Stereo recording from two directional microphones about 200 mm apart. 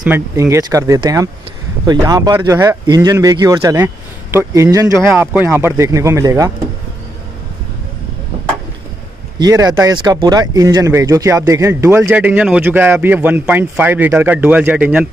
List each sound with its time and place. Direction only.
0.0 s speech: 10° right (ahead or behind)
9.4 s speech: 20° right (ahead or behind)